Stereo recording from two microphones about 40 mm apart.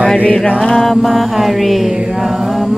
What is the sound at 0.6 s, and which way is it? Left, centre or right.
Music, centre.